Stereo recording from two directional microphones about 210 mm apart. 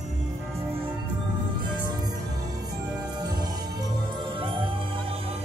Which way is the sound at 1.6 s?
20° right (ahead or behind).